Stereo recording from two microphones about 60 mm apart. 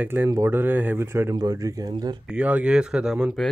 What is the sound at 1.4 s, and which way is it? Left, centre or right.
Speech, right.